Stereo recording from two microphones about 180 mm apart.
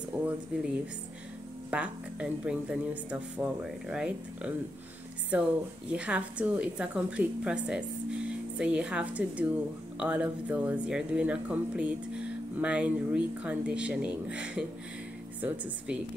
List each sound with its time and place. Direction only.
0.1 s speech: 5° right (ahead or behind)
1.7 s speech: 5° right (ahead or behind)